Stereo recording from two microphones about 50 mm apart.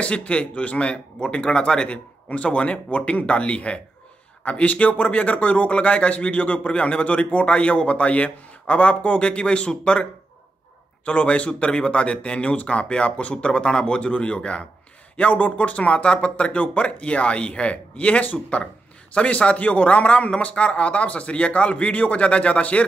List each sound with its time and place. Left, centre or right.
0.0 s speech: left
11.1 s speech: left